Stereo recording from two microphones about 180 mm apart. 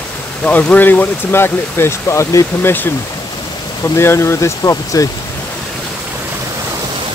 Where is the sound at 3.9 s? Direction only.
15° left (ahead or behind).